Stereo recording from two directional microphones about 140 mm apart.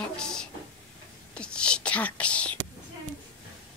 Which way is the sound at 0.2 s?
5° left (ahead or behind).